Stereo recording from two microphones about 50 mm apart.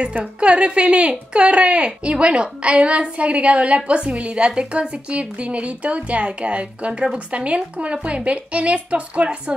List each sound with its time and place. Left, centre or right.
0.2 s a woman's voice: right